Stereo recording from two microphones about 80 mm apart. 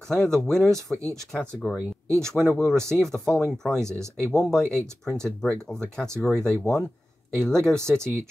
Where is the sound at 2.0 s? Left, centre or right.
Right.